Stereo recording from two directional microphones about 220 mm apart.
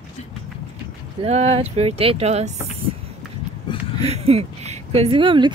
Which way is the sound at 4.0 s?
25° right (ahead or behind).